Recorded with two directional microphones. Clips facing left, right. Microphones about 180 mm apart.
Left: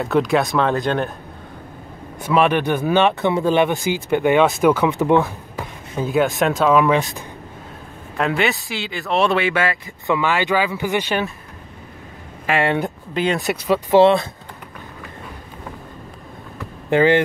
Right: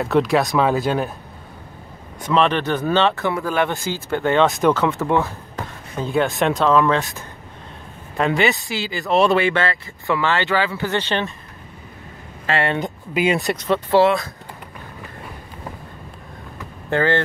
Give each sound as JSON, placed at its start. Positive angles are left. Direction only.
{"t": 0.0, "sound": "speech", "side_deg": 0}
{"t": 2.2, "sound": "speech", "side_deg": 10}
{"t": 5.9, "sound": "speech", "side_deg": 5}
{"t": 8.2, "sound": "speech", "side_deg": 0}
{"t": 9.6, "sound": "speech", "side_deg": 15}
{"t": 12.4, "sound": "speech", "side_deg": 15}
{"t": 13.1, "sound": "speech", "side_deg": -10}
{"t": 13.5, "sound": "speech", "side_deg": 10}
{"t": 14.0, "sound": "speech", "side_deg": 25}
{"t": 16.9, "sound": "speech", "side_deg": 15}